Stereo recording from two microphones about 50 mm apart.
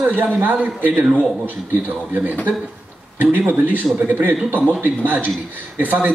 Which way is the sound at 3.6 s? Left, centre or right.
Right.